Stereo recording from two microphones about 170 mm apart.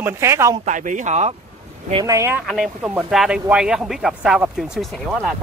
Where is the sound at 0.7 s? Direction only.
45° right (ahead or behind).